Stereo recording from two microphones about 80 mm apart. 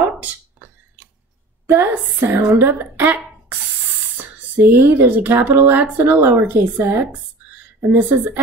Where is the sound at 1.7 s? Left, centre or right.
Right.